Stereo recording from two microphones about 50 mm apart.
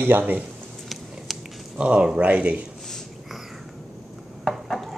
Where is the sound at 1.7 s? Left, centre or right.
Right.